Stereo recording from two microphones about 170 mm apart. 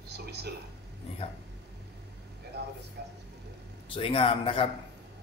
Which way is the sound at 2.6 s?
90° right.